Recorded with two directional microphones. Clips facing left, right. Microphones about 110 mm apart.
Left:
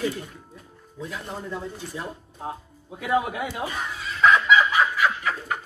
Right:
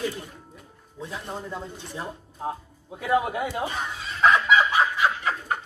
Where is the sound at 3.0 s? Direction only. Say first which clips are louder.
Right 1 dB; 35° right (ahead or behind).